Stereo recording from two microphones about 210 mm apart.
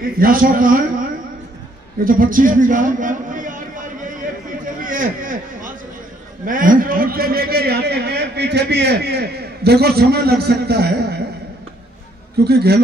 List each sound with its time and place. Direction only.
0.0 s a man's voice: 45° right (ahead or behind)
2.0 s a man's voice: 40° right (ahead or behind)
4.8 s a sound: 40° right (ahead or behind)
6.4 s a man's voice: 40° right (ahead or behind)
12.4 s a man's voice: 50° right (ahead or behind)